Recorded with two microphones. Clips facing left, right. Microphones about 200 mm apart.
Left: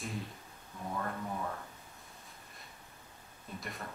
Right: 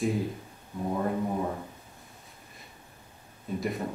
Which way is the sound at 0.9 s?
20° right (ahead or behind).